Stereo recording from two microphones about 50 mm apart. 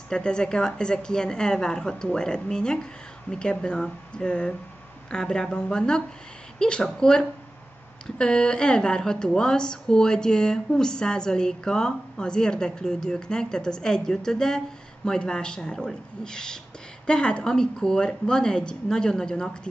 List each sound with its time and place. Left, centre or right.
0.1 s a woman's voice: centre